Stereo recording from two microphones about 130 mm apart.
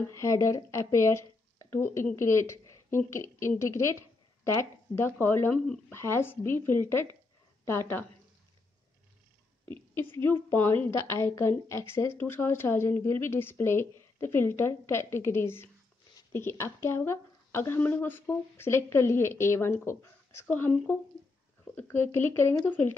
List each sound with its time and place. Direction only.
0.1 s a woman's voice: 25° left (ahead or behind)
9.7 s a woman's voice: 15° left (ahead or behind)